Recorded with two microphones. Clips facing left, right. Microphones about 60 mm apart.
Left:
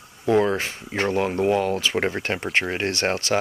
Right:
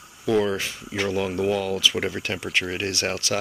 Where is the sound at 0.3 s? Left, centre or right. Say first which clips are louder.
Left 2 dB; left.